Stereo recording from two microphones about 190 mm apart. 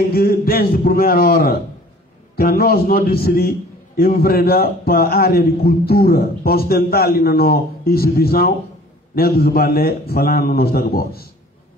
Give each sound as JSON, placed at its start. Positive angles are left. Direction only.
{"t": 0.1, "sound": "a man's voice", "side_deg": 55}